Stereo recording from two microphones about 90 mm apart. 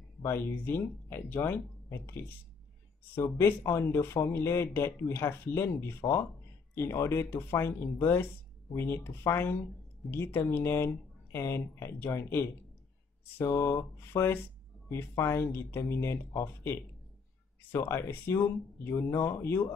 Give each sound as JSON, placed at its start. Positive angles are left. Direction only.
{"t": 0.2, "sound": "speech", "side_deg": 25}